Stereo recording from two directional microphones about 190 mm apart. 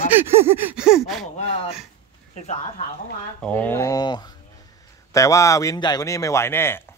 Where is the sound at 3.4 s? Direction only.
10° left (ahead or behind).